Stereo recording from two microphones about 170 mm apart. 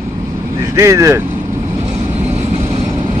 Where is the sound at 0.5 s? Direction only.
15° right (ahead or behind).